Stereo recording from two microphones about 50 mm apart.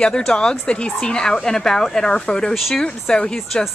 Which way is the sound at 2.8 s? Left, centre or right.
Centre.